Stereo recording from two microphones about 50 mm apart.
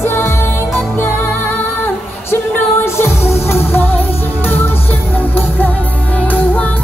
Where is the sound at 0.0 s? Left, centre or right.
Left.